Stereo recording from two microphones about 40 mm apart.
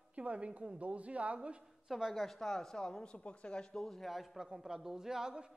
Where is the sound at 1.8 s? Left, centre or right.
Centre.